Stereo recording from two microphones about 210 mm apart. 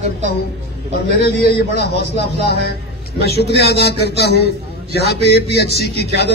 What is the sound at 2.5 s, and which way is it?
A man's voice, 50° left (ahead or behind).